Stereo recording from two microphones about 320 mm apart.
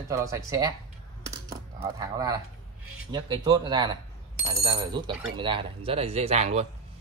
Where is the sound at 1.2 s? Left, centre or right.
Centre.